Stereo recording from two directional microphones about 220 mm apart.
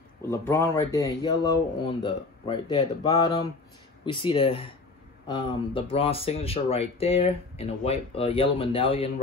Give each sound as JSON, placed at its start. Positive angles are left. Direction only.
{"t": 0.3, "sound": "speech", "side_deg": 10}